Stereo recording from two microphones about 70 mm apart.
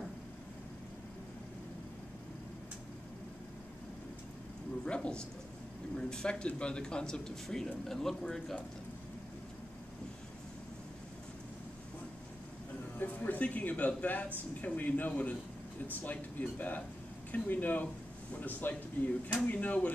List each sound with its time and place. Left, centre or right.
4.8 s speech: centre
13.0 s speech: left